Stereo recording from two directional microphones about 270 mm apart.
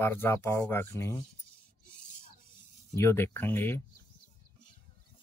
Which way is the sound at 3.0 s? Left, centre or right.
Centre.